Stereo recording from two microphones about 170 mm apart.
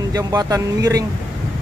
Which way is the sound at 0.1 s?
20° right (ahead or behind).